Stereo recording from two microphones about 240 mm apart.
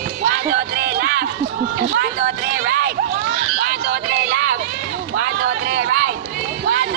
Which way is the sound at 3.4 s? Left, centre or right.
Right.